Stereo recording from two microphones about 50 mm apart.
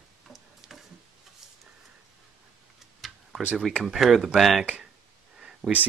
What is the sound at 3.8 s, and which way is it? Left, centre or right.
Speech, centre.